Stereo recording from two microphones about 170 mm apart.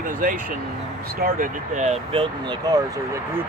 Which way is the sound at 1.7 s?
40° right (ahead or behind).